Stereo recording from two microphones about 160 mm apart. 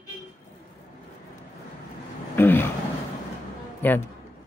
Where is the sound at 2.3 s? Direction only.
15° left (ahead or behind).